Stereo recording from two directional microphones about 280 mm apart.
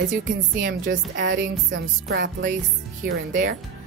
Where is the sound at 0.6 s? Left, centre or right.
Right.